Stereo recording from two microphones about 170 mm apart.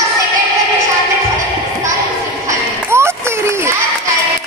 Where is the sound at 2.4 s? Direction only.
15° right (ahead or behind).